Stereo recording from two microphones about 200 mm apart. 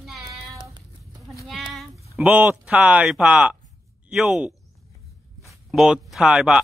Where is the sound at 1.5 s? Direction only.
Centre (ahead or behind).